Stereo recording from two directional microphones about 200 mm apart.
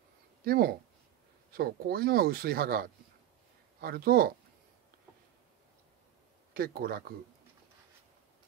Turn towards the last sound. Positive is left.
turn(degrees=-50)  # may be behind; listen again after turning